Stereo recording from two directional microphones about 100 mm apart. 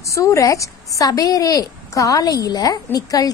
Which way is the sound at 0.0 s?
30° left (ahead or behind).